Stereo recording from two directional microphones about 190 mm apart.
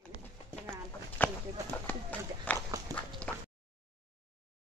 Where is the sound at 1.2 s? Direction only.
10° left (ahead or behind).